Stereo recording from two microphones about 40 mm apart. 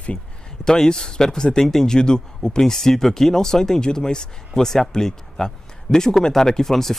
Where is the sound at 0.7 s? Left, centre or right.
Centre.